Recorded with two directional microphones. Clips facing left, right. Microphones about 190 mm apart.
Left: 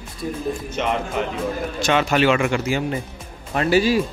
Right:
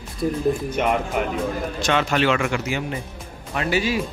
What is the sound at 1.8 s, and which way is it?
Speech, 10° left (ahead or behind).